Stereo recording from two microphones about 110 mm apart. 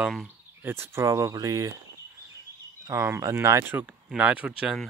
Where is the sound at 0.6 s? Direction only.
20° right (ahead or behind).